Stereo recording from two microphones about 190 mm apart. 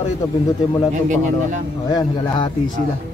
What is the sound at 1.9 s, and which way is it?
Speech, 25° left (ahead or behind).